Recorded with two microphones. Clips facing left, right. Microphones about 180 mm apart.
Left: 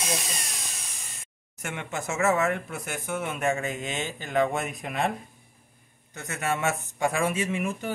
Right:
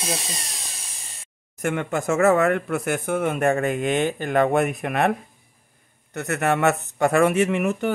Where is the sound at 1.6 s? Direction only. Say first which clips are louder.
Right 9 dB; 55° right (ahead or behind).